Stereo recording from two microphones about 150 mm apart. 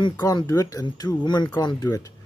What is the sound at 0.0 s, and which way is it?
Speech, 25° left (ahead or behind).